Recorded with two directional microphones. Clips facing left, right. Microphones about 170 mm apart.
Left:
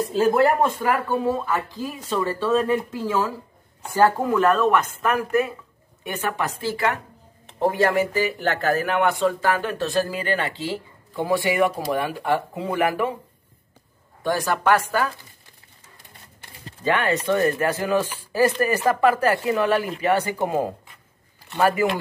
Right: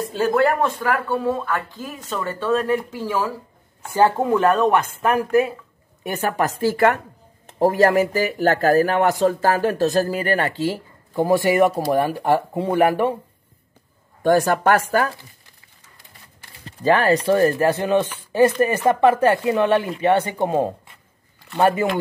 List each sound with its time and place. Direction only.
0.1 s speech: 5° left (ahead or behind)
3.9 s a woman's voice: 25° right (ahead or behind)
14.2 s a woman's voice: 50° right (ahead or behind)
16.8 s speech: 35° right (ahead or behind)